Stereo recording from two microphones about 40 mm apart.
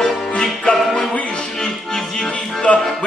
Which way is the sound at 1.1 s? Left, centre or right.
Left.